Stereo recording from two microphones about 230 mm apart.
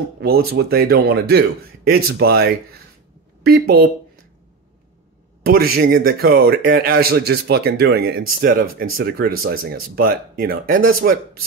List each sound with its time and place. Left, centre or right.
0.2 s speech: right
5.4 s speech: right